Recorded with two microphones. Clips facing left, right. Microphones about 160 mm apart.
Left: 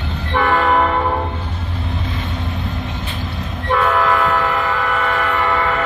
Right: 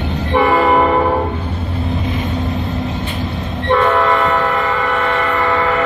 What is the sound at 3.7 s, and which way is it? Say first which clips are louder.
Train: right 3 dB; centre (ahead or behind).